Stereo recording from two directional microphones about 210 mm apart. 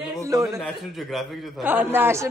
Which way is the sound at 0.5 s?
Centre (ahead or behind).